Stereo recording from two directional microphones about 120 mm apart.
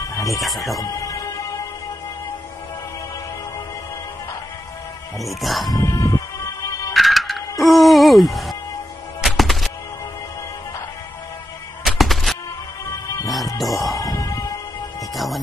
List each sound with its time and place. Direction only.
0.2 s speech: centre (ahead or behind)
0.7 s music: 30° left (ahead or behind)
5.2 s speech: centre (ahead or behind)
5.7 s music: 30° left (ahead or behind)
6.9 s music: centre (ahead or behind)
11.8 s music: centre (ahead or behind)
13.6 s music: centre (ahead or behind)
13.9 s music: 25° left (ahead or behind)